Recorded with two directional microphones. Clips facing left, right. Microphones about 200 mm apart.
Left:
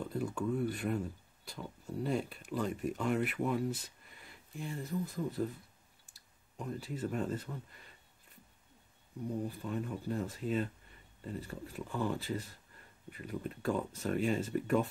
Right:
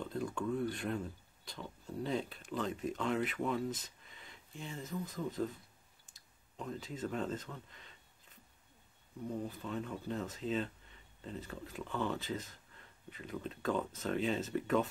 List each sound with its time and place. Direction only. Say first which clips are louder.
0.0 s speech: left 2 dB; 10° left (ahead or behind)
6.5 s speech: left 2 dB; 10° left (ahead or behind)
9.3 s speech: left 2 dB; 10° left (ahead or behind)